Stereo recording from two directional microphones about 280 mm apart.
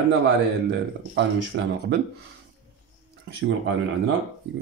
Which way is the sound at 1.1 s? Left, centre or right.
Right.